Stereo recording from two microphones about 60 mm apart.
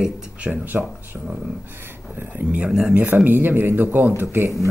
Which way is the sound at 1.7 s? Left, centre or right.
Right.